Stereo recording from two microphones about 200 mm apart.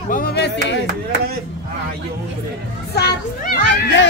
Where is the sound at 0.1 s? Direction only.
50° left (ahead or behind).